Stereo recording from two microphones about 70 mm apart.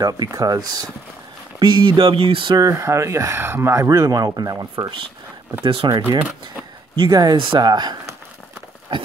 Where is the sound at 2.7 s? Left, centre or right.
Right.